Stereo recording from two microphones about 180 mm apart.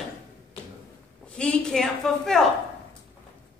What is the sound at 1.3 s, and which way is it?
A woman's voice, 5° left (ahead or behind).